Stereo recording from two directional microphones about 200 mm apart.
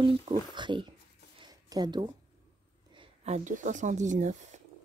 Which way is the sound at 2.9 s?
35° right (ahead or behind).